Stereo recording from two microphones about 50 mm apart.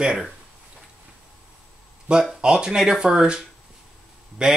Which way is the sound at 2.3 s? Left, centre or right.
Centre.